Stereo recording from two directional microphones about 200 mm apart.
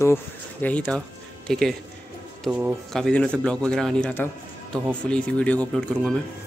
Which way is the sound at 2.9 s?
5° left (ahead or behind).